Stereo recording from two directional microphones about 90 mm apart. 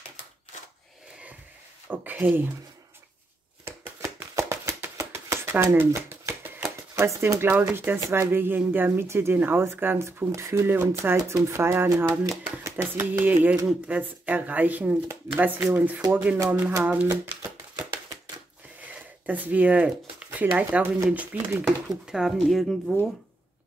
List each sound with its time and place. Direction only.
1.9 s a sound: 20° right (ahead or behind)
3.6 s a sound: 30° right (ahead or behind)
4.9 s shuffling cards: 30° right (ahead or behind)
7.0 s speech: 30° right (ahead or behind)
11.1 s speech: 35° right (ahead or behind); by 17.1 s 15° right (ahead or behind)
17.1 s speech: 35° right (ahead or behind)
18.9 s speech: 20° right (ahead or behind)
21.6 s speech: 5° right (ahead or behind)